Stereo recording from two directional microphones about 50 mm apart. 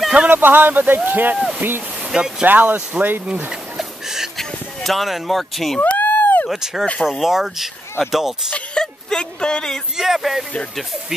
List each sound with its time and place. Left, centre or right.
0.3 s speech: right
2.0 s speech: centre
2.4 s speech: right
3.3 s speech: right
3.7 s a sound: centre
4.4 s speech: centre
5.8 s a sound: left
6.5 s speech: centre
8.7 s a sound: centre
9.9 s speech: centre